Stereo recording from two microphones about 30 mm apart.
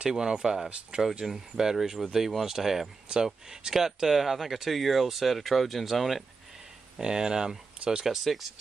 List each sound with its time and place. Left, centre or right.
0.1 s speech: centre
3.1 s speech: right
3.4 s speech: centre
7.0 s speech: right